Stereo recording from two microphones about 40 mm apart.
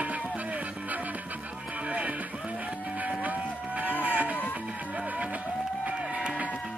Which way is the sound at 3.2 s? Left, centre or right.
Right.